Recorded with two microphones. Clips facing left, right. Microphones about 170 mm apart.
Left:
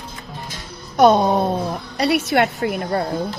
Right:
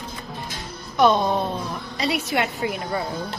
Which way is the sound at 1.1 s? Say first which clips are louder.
Left 5 dB; 45° left (ahead or behind).